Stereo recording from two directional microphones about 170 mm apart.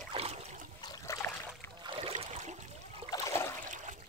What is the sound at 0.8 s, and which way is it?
Trickle, 20° left (ahead or behind).